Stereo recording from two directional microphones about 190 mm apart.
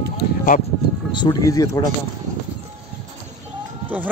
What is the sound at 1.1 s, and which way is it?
Speech, 20° left (ahead or behind).